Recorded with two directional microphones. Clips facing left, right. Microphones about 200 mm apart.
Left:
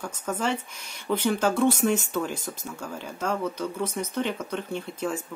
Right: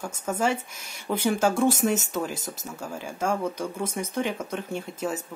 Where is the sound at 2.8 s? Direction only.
10° right (ahead or behind).